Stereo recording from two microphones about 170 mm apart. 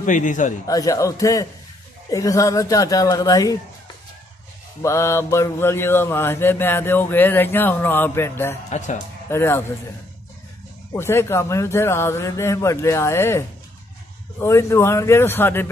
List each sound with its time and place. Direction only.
0.0 s a man's voice: 50° left (ahead or behind)
0.7 s speech: 20° left (ahead or behind)
4.8 s mantra: 15° left (ahead or behind)
8.6 s a man's voice: 45° left (ahead or behind)
9.3 s mantra: 15° left (ahead or behind)
10.9 s mantra: 15° left (ahead or behind)